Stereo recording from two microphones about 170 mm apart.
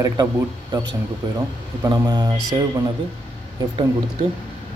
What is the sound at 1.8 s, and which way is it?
Speech, 20° right (ahead or behind).